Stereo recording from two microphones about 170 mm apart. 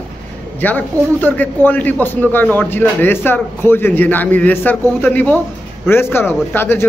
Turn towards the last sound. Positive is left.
turn(degrees=10)  # may be behind; listen again after turning